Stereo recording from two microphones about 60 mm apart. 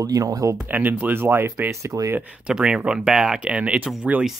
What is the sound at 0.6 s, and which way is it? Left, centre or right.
Speech, right.